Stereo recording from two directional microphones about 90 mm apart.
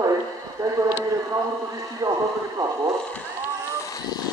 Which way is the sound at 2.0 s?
40° right (ahead or behind).